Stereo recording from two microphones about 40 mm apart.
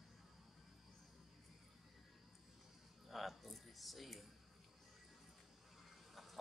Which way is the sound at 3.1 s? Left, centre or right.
Centre.